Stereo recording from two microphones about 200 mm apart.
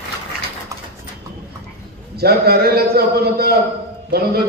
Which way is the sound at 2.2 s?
50° right (ahead or behind).